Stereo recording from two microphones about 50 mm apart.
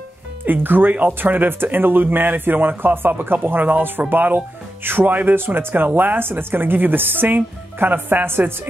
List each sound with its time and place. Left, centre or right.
0.5 s speech: right